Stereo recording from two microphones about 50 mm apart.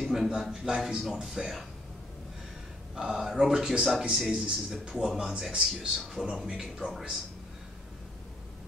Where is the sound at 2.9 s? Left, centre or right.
Centre.